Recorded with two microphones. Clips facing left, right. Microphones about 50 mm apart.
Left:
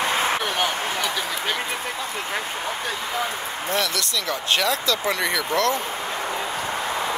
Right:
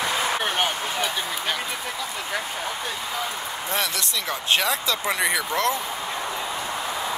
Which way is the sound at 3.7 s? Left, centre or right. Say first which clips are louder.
Left 3 dB; right.